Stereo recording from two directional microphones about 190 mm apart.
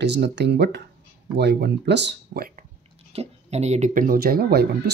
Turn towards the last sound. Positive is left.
turn(degrees=-55)  # may be behind; listen again after turning